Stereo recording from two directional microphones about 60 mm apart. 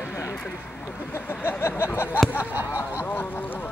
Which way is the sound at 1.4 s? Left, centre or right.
Left.